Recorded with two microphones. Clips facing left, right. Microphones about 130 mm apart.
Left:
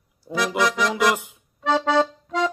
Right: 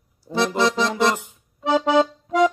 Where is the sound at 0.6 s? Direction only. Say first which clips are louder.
Even; 25° right (ahead or behind).